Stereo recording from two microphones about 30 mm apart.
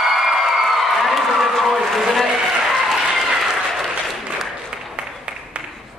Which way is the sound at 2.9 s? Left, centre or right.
Centre.